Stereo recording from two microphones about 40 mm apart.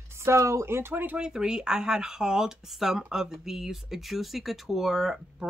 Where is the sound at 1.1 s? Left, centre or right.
Right.